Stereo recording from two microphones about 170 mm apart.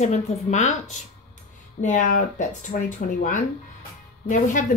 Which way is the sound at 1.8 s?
50° left (ahead or behind).